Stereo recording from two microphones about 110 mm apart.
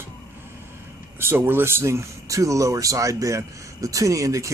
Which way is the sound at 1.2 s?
20° right (ahead or behind).